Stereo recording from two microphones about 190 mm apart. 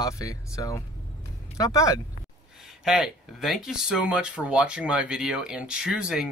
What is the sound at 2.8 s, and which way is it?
Speech, centre (ahead or behind).